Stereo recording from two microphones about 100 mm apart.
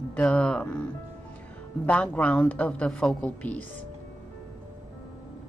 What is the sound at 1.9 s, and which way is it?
Speech, 15° left (ahead or behind).